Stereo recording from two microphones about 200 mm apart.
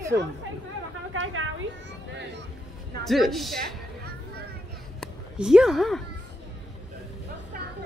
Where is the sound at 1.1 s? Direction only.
80° right.